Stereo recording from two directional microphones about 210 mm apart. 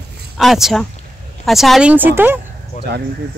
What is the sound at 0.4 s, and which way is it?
Speech, centre (ahead or behind).